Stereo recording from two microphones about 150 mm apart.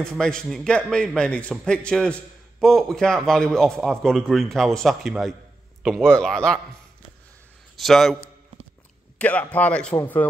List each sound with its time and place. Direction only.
0.0 s a man's voice: 5° left (ahead or behind)
7.7 s a man's voice: centre (ahead or behind)
9.2 s speech: 10° left (ahead or behind)